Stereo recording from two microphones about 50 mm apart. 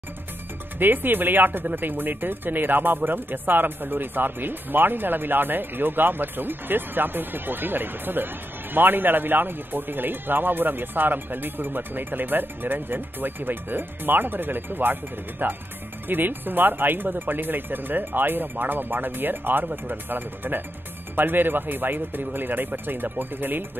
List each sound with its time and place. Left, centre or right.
0.7 s speech: right